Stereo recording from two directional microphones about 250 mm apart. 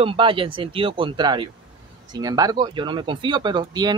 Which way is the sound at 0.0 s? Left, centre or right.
Right.